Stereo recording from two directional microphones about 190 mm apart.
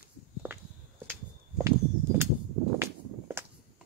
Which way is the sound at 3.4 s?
15° right (ahead or behind).